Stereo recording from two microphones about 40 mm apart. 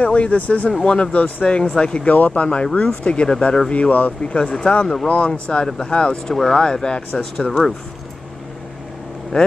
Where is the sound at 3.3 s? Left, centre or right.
Centre.